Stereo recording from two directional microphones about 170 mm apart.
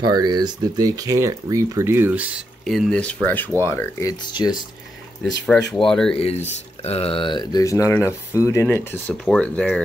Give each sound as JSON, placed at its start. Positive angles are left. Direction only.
{"t": 0.0, "sound": "speech", "side_deg": -25}
{"t": 4.3, "sound": "speech", "side_deg": 25}
{"t": 5.7, "sound": "speech", "side_deg": 5}
{"t": 6.1, "sound": "speech", "side_deg": 35}